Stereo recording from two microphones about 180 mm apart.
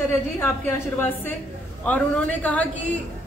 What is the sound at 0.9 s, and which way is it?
A woman's voice, 10° left (ahead or behind).